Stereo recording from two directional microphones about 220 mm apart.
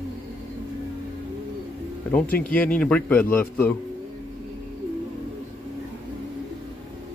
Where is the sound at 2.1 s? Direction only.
5° left (ahead or behind).